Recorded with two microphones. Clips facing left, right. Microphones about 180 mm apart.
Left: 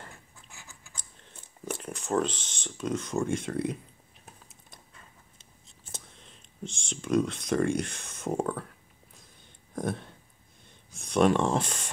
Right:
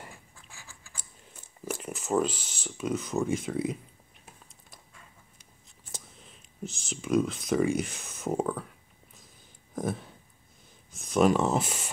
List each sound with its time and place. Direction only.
0.5 s scissors: 20° left (ahead or behind)
0.9 s speech: 5° right (ahead or behind)
5.4 s whispering: 25° left (ahead or behind)
6.0 s a sound: 5° right (ahead or behind)
10.6 s speech: centre (ahead or behind)